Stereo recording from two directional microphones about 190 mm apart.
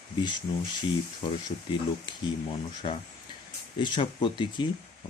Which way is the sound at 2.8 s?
25° left (ahead or behind).